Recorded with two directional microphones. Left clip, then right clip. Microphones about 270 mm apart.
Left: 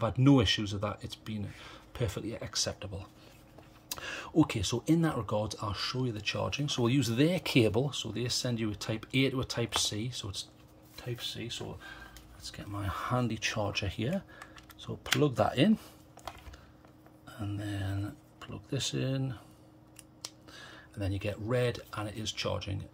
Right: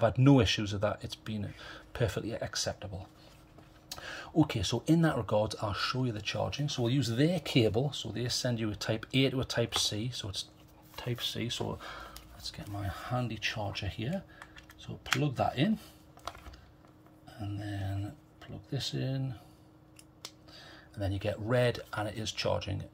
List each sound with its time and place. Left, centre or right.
0.0 s speech: centre
11.0 s speech: centre
12.4 s speech: centre
12.7 s speech: centre
15.2 s speech: centre
17.3 s speech: centre
20.5 s speech: centre